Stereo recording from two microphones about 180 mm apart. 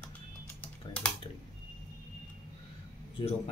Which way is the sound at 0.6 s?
5° left (ahead or behind).